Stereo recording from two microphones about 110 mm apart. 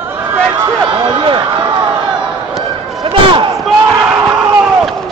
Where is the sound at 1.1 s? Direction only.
45° right (ahead or behind).